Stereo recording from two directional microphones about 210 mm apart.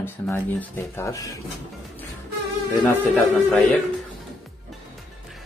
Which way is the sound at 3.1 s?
10° left (ahead or behind).